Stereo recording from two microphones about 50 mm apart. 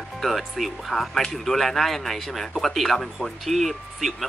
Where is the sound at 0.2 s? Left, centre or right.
Centre.